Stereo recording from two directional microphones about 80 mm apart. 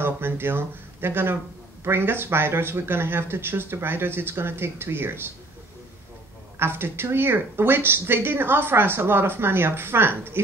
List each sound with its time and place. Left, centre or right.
0.0 s speech: right
6.6 s speech: right